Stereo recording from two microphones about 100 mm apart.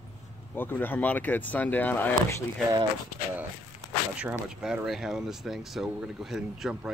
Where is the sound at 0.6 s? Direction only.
20° left (ahead or behind).